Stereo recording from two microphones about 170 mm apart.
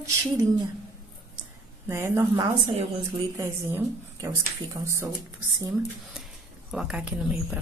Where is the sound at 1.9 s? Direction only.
15° right (ahead or behind).